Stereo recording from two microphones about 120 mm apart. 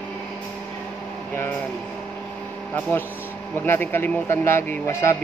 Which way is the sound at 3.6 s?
15° left (ahead or behind).